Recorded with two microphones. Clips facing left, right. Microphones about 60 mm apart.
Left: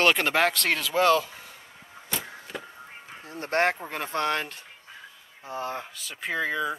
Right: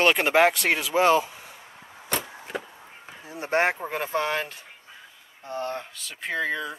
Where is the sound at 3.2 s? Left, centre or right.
Centre.